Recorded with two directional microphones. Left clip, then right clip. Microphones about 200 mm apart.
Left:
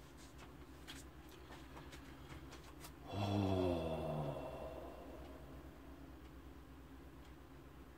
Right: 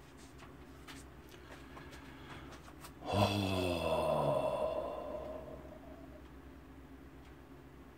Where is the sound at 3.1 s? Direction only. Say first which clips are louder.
Right 7 dB; 45° right (ahead or behind).